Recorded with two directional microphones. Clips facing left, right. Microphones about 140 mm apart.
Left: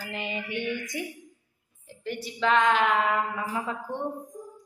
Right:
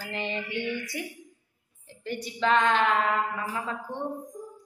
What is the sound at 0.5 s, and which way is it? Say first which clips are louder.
Speech: left 1 dB; 15° left (ahead or behind).